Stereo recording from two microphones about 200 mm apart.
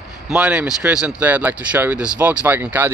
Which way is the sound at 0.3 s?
5° right (ahead or behind).